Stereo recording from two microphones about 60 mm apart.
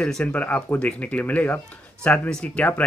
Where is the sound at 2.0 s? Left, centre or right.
Centre.